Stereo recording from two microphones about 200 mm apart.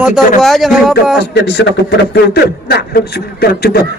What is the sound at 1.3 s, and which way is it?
Speech, 55° left (ahead or behind).